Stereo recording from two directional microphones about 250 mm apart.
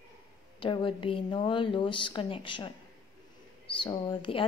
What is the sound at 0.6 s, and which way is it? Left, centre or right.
Speech, left.